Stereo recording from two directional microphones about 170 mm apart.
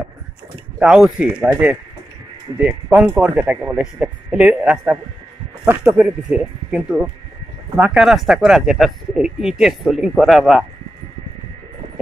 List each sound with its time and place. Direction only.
0.7 s speech: 5° right (ahead or behind)